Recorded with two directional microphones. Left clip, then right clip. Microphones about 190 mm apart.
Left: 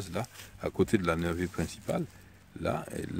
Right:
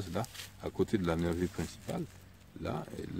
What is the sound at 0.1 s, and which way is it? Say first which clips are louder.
Speech: left 1 dB; 50° left (ahead or behind).